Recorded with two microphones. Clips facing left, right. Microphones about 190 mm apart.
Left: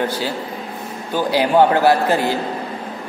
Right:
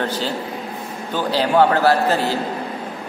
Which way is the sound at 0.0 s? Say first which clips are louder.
Left 1 dB; 10° left (ahead or behind).